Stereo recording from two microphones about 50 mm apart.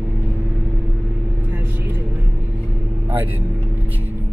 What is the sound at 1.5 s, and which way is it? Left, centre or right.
Vehicle, right.